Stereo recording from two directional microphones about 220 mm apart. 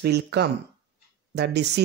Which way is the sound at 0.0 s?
50° right (ahead or behind).